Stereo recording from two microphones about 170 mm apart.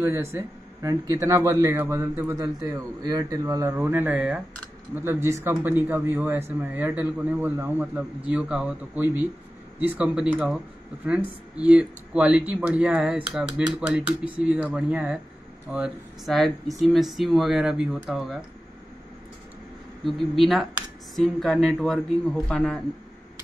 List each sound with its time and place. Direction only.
0.0 s speech: 15° right (ahead or behind)
2.8 s speech: 20° right (ahead or behind); by 18.4 s centre (ahead or behind)
20.1 s speech: centre (ahead or behind)